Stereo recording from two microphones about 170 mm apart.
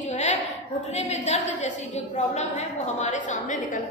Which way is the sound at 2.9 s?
45° left (ahead or behind).